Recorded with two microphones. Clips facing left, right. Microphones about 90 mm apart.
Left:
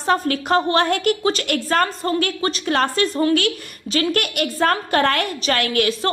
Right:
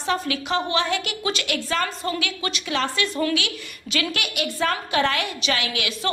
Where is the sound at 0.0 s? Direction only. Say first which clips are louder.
Left 5 dB; 45° left (ahead or behind).